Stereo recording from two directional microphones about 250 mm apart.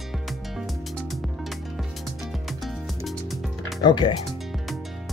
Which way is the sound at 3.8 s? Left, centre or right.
Centre.